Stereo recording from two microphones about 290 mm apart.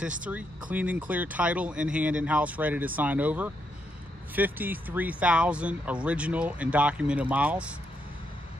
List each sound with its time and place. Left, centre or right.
0.3 s speech: centre